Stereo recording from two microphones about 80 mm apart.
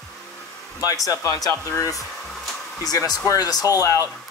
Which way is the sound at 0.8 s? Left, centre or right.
Left.